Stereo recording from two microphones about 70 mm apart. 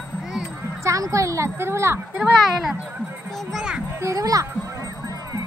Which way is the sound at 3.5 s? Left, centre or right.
Centre.